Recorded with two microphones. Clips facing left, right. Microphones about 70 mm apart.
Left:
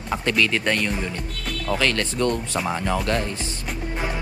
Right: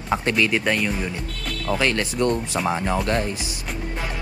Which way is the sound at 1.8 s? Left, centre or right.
Centre.